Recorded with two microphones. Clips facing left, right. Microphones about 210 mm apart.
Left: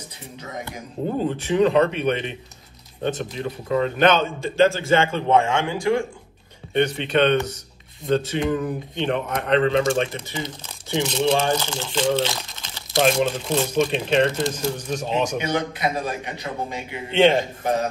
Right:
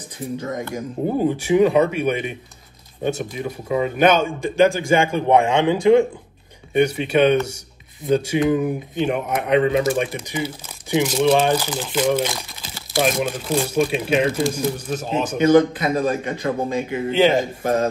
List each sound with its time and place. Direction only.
1.1 s speech: 10° right (ahead or behind)
6.7 s speech: 10° right (ahead or behind)
15.3 s a man's voice: 45° right (ahead or behind)
17.1 s speech: 5° right (ahead or behind)